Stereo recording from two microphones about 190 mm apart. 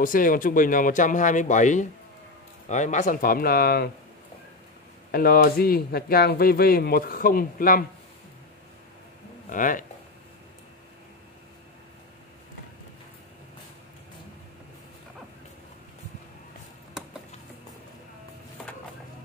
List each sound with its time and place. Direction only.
0.0 s speech: 45° left (ahead or behind)
5.1 s speech: 50° left (ahead or behind)
9.5 s speech: 45° left (ahead or behind)